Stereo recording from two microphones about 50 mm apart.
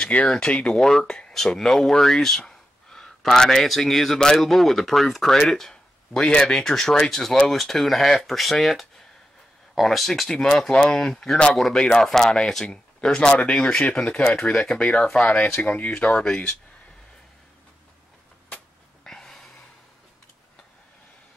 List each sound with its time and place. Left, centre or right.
0.0 s speech: left
0.3 s speech: centre
10.3 s speech: centre
13.9 s speech: left
14.5 s speech: centre
14.8 s speech: centre
15.6 s speech: left
16.3 s a sound: left
19.0 s a sound: centre